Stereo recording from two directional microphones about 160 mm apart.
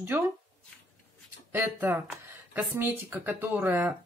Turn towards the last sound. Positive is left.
turn(degrees=-10)  # may be behind; listen again after turning